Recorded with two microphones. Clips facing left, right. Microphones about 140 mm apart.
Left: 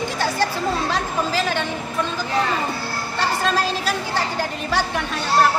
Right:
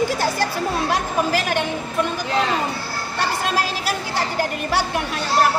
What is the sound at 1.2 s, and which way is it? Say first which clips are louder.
Speech: right 1 dB; 55° right (ahead or behind).